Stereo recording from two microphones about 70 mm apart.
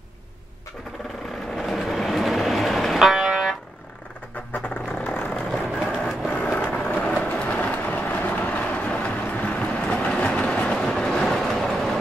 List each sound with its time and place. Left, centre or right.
1.6 s vehicle: centre
4.5 s vehicle: left
5.5 s vehicle: centre
6.2 s vehicle: centre
6.9 s vehicle: left; by 12.0 s centre